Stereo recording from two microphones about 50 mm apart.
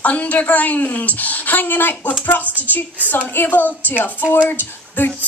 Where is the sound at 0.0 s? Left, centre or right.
Left.